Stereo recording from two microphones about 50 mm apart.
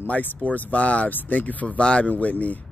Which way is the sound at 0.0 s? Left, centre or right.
Left.